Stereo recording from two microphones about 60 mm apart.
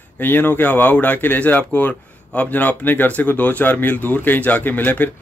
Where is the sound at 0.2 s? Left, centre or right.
Left.